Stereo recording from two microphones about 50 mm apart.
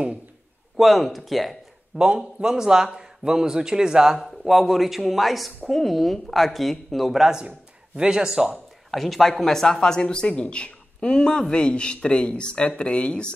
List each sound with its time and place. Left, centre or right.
0.7 s speech: centre
2.0 s a man's voice: centre
4.2 s speech: centre
7.2 s a man's voice: centre
8.9 s speech: centre; by 13.3 s left